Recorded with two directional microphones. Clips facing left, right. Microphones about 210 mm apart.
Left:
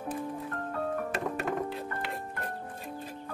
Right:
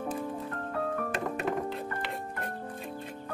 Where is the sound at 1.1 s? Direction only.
Centre (ahead or behind).